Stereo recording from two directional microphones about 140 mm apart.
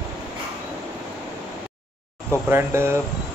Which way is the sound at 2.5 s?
15° right (ahead or behind).